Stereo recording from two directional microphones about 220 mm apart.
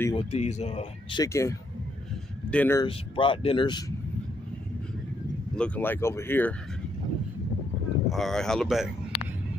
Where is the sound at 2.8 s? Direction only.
25° left (ahead or behind).